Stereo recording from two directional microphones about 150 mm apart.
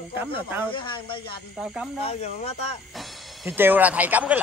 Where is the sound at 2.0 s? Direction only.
45° left (ahead or behind).